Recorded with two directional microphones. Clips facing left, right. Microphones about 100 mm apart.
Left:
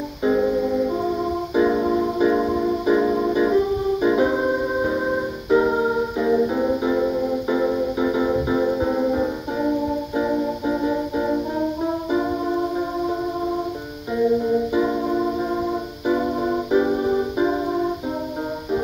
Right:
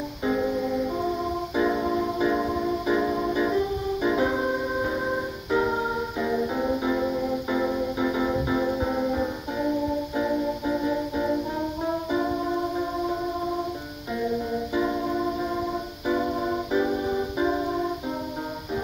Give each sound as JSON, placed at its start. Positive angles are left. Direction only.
{"t": 0.2, "sound": "music", "side_deg": 20}
{"t": 12.1, "sound": "music", "side_deg": 15}
{"t": 14.7, "sound": "music", "side_deg": 20}